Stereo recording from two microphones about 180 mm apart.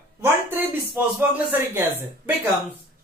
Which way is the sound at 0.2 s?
10° right (ahead or behind).